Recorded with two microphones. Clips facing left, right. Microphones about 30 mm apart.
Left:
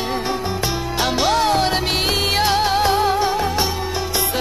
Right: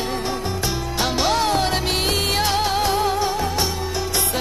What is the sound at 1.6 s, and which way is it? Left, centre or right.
Music, centre.